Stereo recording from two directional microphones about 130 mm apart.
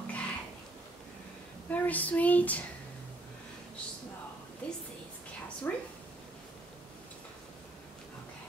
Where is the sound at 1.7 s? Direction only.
10° left (ahead or behind).